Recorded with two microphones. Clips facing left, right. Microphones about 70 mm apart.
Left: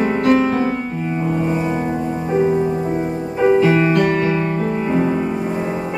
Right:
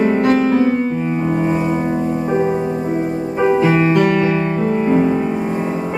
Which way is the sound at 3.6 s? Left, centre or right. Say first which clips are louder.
Even; right.